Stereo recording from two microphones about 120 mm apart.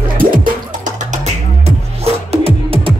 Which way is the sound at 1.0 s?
75° right (ahead or behind).